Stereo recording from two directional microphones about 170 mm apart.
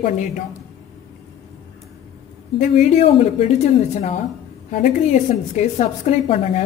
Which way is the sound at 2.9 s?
40° left (ahead or behind).